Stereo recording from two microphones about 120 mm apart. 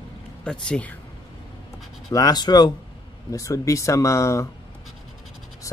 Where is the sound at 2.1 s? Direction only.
30° left (ahead or behind).